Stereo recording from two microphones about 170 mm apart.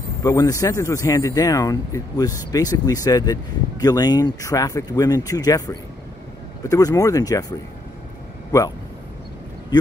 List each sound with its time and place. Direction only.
0.2 s speech: 20° left (ahead or behind)